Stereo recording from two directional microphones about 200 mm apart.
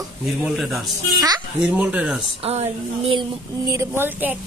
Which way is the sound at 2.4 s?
30° right (ahead or behind).